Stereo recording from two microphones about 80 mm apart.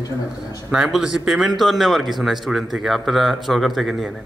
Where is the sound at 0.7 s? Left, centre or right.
Centre.